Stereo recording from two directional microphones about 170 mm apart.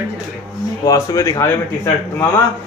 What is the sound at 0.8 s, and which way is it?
Speech, 20° left (ahead or behind).